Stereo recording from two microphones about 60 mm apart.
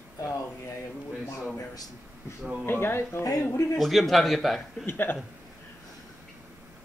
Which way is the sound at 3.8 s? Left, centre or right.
Centre.